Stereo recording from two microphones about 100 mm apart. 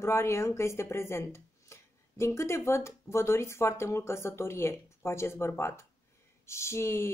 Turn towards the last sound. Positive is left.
turn(degrees=25)  # may be behind; listen again after turning